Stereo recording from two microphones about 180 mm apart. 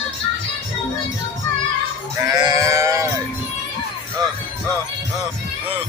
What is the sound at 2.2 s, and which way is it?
Sheep, 15° right (ahead or behind).